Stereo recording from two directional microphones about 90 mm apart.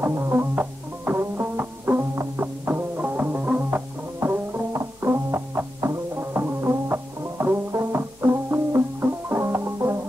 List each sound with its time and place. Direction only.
0.0 s music: 25° right (ahead or behind)